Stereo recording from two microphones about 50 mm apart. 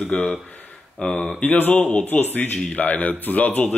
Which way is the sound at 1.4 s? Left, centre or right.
Left.